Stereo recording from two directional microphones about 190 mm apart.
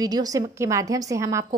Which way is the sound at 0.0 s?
20° right (ahead or behind).